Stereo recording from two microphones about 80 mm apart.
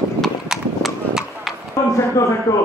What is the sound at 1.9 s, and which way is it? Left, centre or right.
Speech, left.